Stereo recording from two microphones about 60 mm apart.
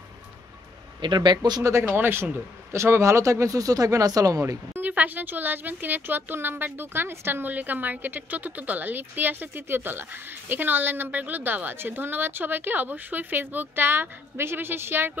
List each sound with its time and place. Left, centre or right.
1.6 s speech: right
1.9 s a woman's voice: right
2.7 s speech: right
4.7 s a woman's voice: right
7.4 s a woman's voice: right